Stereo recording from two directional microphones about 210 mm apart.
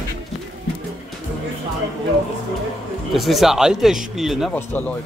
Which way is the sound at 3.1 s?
Centre (ahead or behind).